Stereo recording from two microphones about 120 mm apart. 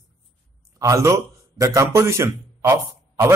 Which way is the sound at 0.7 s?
25° right (ahead or behind).